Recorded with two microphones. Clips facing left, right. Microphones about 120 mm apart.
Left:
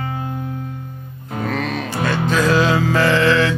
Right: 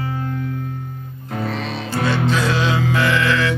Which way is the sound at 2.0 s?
45° left (ahead or behind).